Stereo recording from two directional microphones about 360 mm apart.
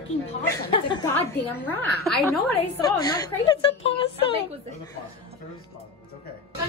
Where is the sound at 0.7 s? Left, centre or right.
Centre.